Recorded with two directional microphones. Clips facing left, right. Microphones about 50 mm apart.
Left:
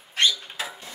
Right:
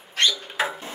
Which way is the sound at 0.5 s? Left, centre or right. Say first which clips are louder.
Right 8 dB; right.